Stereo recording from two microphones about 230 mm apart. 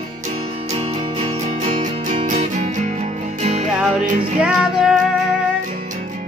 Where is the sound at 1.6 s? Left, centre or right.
Right.